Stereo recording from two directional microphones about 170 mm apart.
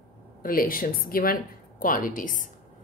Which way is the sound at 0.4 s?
55° left (ahead or behind).